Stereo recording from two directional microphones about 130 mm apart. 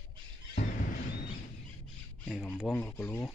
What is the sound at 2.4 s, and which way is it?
Speech, 15° left (ahead or behind).